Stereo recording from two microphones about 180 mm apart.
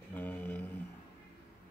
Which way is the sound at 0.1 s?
10° left (ahead or behind).